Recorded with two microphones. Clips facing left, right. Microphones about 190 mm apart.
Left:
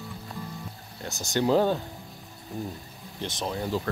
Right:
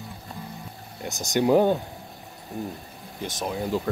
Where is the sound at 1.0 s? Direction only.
15° right (ahead or behind).